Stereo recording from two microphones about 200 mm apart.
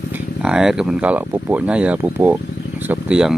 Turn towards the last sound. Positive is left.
turn(degrees=-5)  # may be behind; listen again after turning